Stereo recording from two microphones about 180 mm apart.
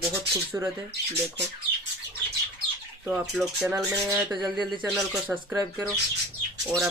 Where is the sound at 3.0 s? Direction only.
5° right (ahead or behind).